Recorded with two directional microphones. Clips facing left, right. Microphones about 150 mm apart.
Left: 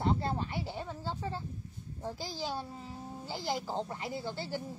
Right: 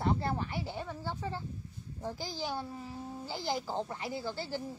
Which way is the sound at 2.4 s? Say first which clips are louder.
Right 1 dB; 25° left (ahead or behind).